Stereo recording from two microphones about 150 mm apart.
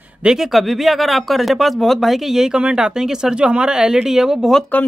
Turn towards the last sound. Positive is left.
turn(degrees=0)  # may be behind; listen again after turning